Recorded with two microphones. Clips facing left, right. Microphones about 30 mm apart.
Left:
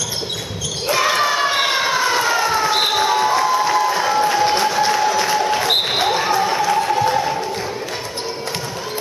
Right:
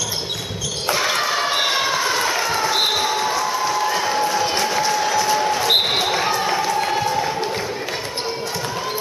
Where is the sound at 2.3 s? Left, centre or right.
Centre.